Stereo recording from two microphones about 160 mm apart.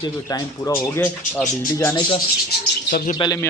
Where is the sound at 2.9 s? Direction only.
65° left (ahead or behind).